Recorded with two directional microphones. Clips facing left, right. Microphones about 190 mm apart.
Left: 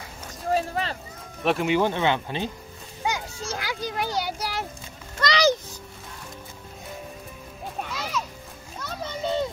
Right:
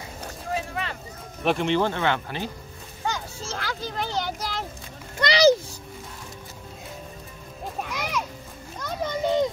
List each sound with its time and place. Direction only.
0.5 s a sound: 35° left (ahead or behind)
1.4 s speech: centre (ahead or behind); by 2.5 s 20° left (ahead or behind)
3.0 s children playing: 15° left (ahead or behind)
5.2 s music: 30° right (ahead or behind)
7.9 s music: 15° right (ahead or behind)
8.8 s a sound: 15° right (ahead or behind)